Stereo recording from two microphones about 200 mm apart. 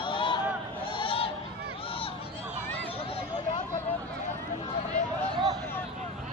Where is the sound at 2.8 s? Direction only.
30° left (ahead or behind).